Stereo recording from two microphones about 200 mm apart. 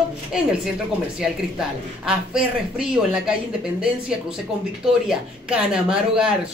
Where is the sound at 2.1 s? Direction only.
5° right (ahead or behind).